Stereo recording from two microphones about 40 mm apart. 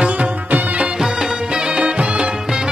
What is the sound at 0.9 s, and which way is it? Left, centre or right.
Music, centre.